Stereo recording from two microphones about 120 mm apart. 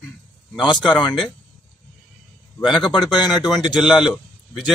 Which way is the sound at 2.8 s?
40° left (ahead or behind).